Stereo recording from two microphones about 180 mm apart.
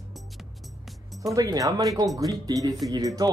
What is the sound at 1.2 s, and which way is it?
Speech, 20° right (ahead or behind).